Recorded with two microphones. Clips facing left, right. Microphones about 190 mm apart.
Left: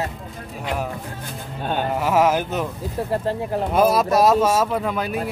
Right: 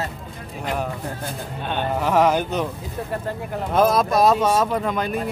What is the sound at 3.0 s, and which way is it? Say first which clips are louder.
Speech: left 5 dB; 30° left (ahead or behind).